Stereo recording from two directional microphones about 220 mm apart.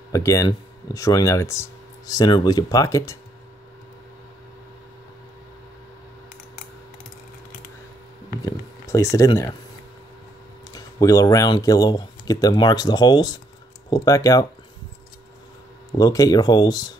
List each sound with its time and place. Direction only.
0.1 s speech: 15° left (ahead or behind)
8.5 s a sound: 15° left (ahead or behind)
10.7 s speech: 15° left (ahead or behind)
15.9 s speech: 15° left (ahead or behind)